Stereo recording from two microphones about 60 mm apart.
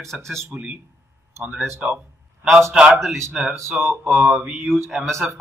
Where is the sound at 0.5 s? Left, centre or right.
Right.